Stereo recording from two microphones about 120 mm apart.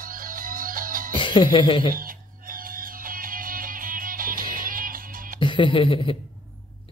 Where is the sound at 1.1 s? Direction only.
40° left (ahead or behind).